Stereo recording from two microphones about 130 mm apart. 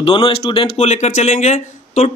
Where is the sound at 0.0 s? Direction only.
45° left (ahead or behind).